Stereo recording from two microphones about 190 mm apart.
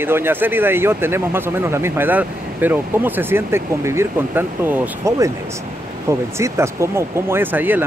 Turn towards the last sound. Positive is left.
turn(degrees=-10)  # may be behind; listen again after turning